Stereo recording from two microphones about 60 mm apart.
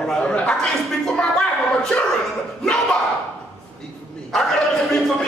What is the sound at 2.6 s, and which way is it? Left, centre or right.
Speech, centre.